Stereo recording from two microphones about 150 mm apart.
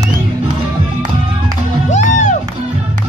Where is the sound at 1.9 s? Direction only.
55° left (ahead or behind).